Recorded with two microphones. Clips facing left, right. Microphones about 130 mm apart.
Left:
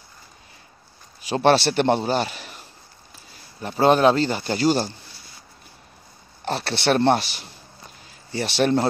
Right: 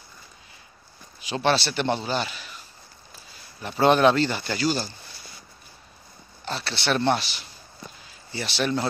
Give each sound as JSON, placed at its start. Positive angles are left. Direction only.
{"t": 1.3, "sound": "a man's voice", "side_deg": 50}
{"t": 3.7, "sound": "speech", "side_deg": 35}
{"t": 4.6, "sound": "a man's voice", "side_deg": 50}
{"t": 6.4, "sound": "a man's voice", "side_deg": 55}